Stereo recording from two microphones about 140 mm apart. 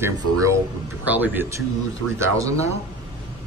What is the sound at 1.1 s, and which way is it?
Speech, 15° right (ahead or behind).